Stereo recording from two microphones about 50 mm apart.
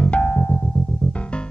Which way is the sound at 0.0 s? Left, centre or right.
Left.